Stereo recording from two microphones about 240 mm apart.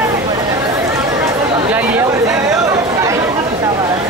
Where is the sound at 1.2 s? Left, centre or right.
Centre.